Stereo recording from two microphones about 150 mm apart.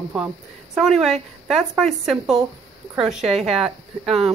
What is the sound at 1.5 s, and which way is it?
A woman's voice, centre (ahead or behind).